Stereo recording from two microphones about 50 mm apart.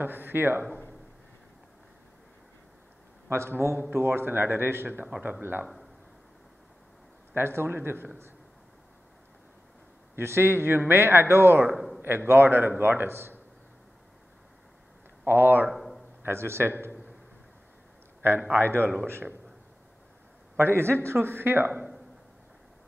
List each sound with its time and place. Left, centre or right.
0.0 s a man's voice: right
3.3 s a man's voice: right
7.3 s a man's voice: right
10.1 s a man's voice: right
11.7 s a sound: centre
12.3 s a man's voice: right
15.2 s speech: right
15.7 s a sound: centre
16.2 s a man's voice: right
18.2 s a man's voice: right
20.5 s a man's voice: right